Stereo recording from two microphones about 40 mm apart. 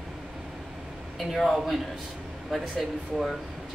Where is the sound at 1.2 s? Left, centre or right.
Centre.